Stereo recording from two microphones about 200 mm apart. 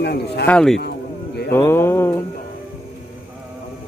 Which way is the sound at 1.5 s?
10° left (ahead or behind).